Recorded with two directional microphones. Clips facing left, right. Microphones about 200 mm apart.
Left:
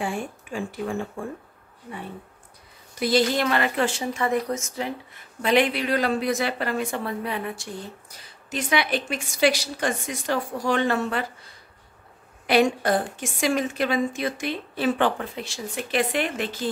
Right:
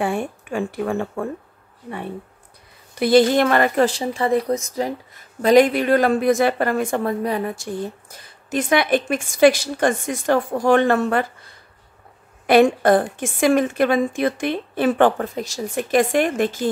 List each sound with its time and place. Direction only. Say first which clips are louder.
0.0 s speech: right 6 dB; 60° right (ahead or behind)
3.0 s speech: right 7 dB; 55° right (ahead or behind)
12.4 s speech: right 6 dB; 55° right (ahead or behind)